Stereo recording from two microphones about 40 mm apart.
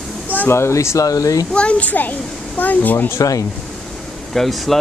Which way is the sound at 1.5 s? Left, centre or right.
Left.